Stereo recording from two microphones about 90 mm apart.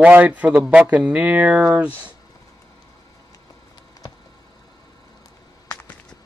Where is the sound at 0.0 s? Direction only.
15° right (ahead or behind).